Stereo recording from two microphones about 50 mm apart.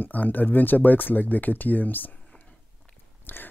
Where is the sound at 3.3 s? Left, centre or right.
Left.